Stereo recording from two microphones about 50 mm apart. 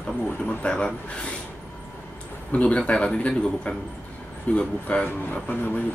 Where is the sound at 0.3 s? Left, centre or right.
Left.